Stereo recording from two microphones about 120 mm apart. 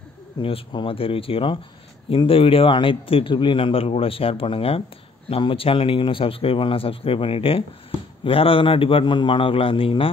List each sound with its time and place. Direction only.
0.4 s a man's voice: 50° left (ahead or behind)